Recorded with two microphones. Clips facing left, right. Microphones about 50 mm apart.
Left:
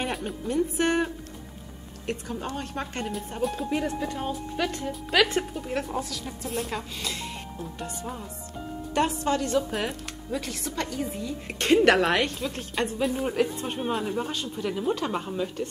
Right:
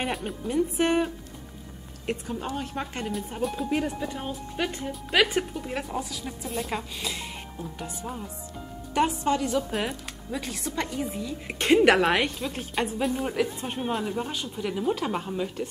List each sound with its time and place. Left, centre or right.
0.1 s speech: centre
2.4 s a woman's voice: centre
8.9 s a woman's voice: centre